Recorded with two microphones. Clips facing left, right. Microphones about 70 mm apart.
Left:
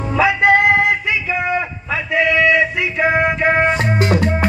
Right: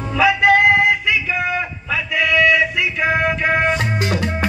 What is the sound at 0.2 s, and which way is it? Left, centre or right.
Music, left.